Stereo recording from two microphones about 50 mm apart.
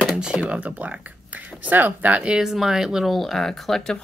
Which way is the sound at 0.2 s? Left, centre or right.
Centre.